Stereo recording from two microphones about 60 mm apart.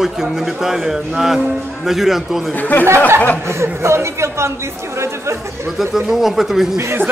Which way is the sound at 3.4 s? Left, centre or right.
Right.